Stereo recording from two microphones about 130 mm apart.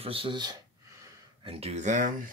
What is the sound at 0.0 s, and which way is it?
Speech, 45° right (ahead or behind).